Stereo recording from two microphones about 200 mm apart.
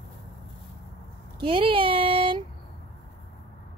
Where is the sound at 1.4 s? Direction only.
25° right (ahead or behind).